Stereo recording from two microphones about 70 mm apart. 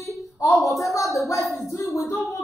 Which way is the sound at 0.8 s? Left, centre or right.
Left.